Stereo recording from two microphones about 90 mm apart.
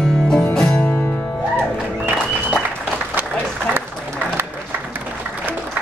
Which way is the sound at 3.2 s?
20° right (ahead or behind).